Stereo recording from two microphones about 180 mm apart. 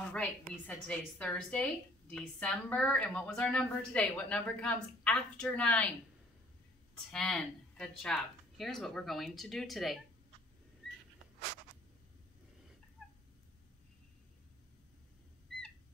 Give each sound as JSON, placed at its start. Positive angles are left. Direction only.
{"t": 0.7, "sound": "a woman's voice", "side_deg": 5}
{"t": 7.1, "sound": "speech", "side_deg": 5}